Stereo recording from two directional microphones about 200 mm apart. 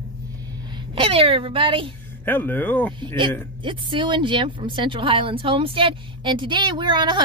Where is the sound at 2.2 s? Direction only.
10° left (ahead or behind).